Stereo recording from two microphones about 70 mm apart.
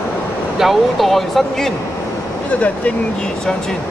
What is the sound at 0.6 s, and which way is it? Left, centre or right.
Speech, centre.